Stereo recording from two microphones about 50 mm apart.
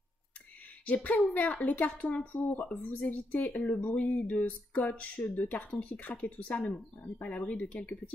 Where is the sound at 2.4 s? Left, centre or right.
Left.